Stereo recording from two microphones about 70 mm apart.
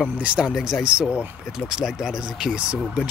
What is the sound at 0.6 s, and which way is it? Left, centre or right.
Speech, centre.